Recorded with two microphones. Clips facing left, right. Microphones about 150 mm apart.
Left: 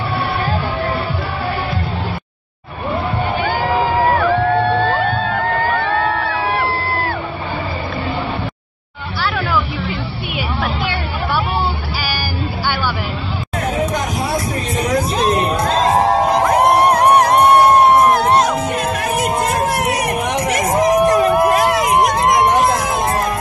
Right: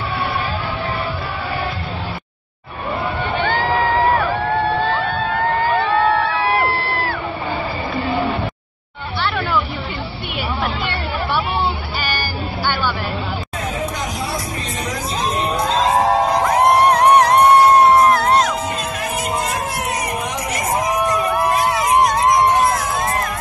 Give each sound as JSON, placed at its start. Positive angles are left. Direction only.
{"t": 3.3, "sound": "a sound", "side_deg": 10}
{"t": 14.9, "sound": "music", "side_deg": 65}
{"t": 16.4, "sound": "music", "side_deg": 10}
{"t": 19.1, "sound": "crowd", "side_deg": 60}